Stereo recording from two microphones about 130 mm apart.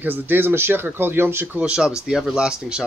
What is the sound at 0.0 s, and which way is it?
Speech, 15° right (ahead or behind).